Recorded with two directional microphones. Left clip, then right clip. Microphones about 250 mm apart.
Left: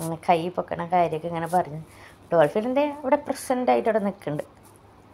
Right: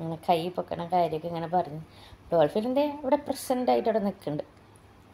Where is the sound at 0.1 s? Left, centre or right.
Centre.